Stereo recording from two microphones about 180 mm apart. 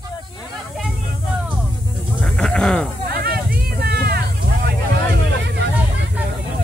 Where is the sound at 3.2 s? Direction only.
60° right (ahead or behind).